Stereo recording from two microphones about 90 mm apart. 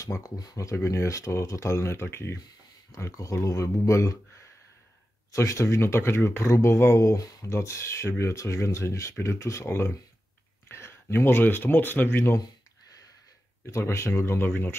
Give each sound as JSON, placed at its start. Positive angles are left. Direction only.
{"t": 0.0, "sound": "speech", "side_deg": 40}
{"t": 2.9, "sound": "speech", "side_deg": 40}
{"t": 5.3, "sound": "speech", "side_deg": 35}
{"t": 13.7, "sound": "speech", "side_deg": 30}